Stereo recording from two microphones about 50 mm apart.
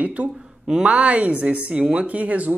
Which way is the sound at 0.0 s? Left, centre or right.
Right.